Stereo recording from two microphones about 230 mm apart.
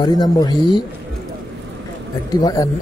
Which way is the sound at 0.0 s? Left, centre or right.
Centre.